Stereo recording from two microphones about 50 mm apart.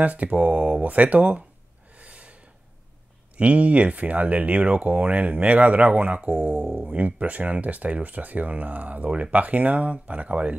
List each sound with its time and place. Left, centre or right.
0.0 s speech: right
2.0 s gasp: right
3.3 s speech: right